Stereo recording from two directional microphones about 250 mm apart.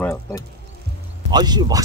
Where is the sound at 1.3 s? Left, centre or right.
Centre.